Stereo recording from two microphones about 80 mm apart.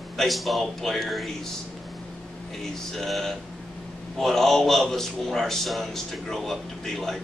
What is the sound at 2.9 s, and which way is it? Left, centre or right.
A man's voice, centre.